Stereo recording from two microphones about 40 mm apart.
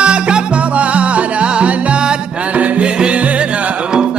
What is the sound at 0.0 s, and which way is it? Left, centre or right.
Music, right.